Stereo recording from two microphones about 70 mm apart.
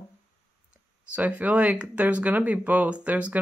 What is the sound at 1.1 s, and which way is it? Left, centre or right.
Speech, right.